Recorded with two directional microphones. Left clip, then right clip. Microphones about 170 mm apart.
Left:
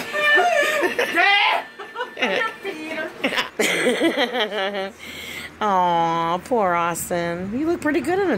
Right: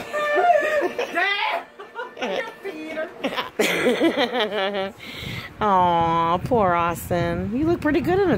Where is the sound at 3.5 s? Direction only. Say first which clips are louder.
Right 2 dB; 30° right (ahead or behind).